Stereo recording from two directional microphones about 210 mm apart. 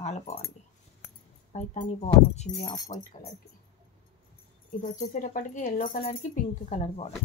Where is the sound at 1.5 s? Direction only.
35° left (ahead or behind).